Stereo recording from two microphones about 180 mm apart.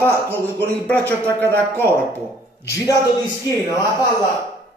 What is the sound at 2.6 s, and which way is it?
A man's voice, 15° left (ahead or behind).